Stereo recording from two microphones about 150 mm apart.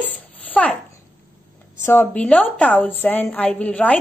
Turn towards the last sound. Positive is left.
turn(degrees=10)  # may be behind; listen again after turning